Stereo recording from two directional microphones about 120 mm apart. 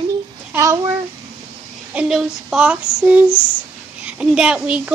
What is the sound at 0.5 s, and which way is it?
Speech, 25° right (ahead or behind).